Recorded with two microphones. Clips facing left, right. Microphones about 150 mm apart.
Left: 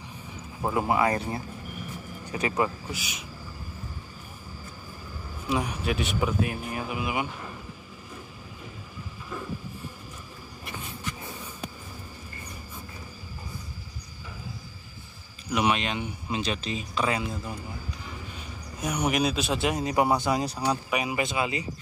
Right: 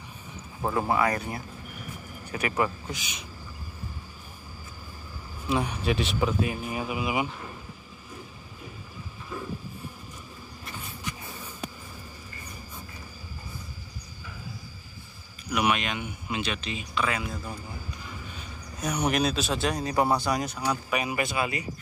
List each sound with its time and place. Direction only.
0.6 s speech: 5° left (ahead or behind)
0.8 s speech: 25° left (ahead or behind)
2.9 s speech: 5° left (ahead or behind)
5.5 s speech: centre (ahead or behind)
15.5 s speech: 30° left (ahead or behind)
18.8 s speech: 5° left (ahead or behind); by 20.8 s 30° left (ahead or behind)
20.9 s speech: 15° left (ahead or behind)